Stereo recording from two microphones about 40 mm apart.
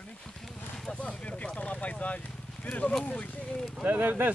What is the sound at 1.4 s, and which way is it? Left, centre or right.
Vehicle, left.